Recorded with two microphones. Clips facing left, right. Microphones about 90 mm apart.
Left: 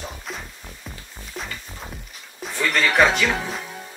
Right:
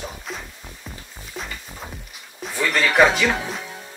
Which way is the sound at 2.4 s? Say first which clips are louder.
Even; centre (ahead or behind).